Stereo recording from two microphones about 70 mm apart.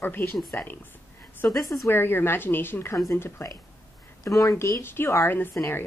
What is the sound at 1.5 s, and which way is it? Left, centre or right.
Speech, left.